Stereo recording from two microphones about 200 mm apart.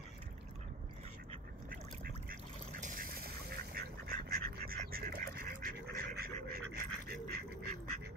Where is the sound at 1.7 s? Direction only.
45° right (ahead or behind).